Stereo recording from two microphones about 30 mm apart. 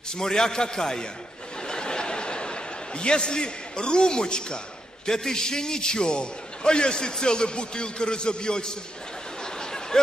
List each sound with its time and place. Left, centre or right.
0.2 s a man's voice: left
1.7 s chuckle: left
5.0 s a man's voice: centre
9.4 s a sound: left